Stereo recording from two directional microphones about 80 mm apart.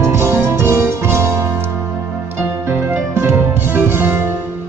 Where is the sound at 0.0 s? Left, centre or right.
Right.